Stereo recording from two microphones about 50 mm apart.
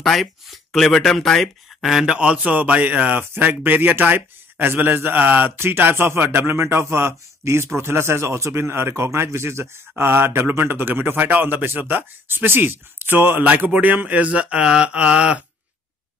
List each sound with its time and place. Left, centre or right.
0.0 s speech: centre
1.8 s speech: centre
2.1 s speech: right
2.5 s speech: right
3.2 s speech: right
5.6 s a man's voice: right